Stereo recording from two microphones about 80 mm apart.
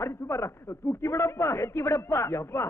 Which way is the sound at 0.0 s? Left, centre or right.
Left.